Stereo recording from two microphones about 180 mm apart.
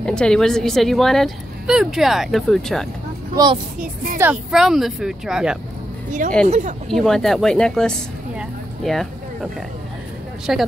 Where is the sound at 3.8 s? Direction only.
50° right (ahead or behind).